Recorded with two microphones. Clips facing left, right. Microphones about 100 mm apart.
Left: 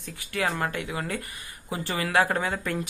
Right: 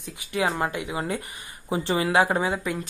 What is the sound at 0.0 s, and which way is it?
Speech, 15° right (ahead or behind).